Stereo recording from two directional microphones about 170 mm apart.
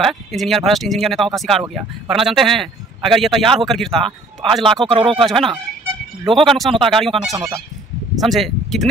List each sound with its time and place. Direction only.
0.0 s speech: centre (ahead or behind)
4.8 s speech: 30° right (ahead or behind)
5.2 s speech: centre (ahead or behind)